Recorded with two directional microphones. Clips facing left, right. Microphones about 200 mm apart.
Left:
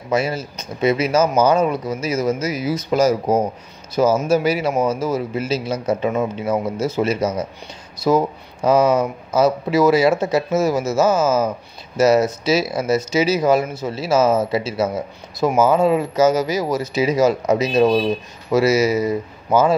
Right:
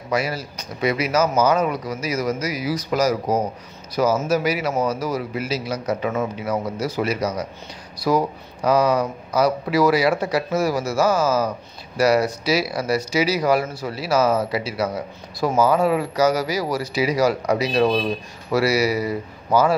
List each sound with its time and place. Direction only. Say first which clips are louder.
0.1 s a man's voice: left 3 dB; 25° left (ahead or behind)